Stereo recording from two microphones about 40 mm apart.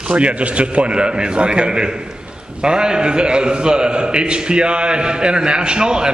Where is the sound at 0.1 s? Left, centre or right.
Right.